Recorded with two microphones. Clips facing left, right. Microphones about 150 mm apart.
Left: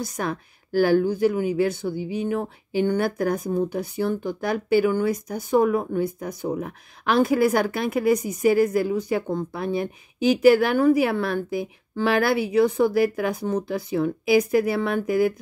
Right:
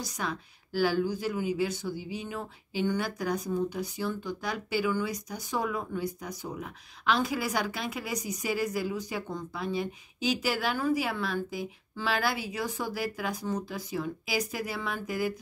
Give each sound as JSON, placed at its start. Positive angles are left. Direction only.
{"t": 0.0, "sound": "speech", "side_deg": 50}